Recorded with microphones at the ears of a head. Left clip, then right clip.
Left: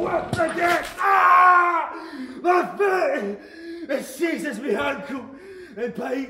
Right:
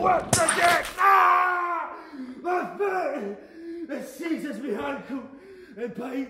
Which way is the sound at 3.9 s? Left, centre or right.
Left.